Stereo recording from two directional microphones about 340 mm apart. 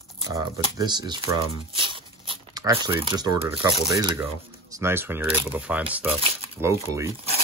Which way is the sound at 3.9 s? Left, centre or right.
Centre.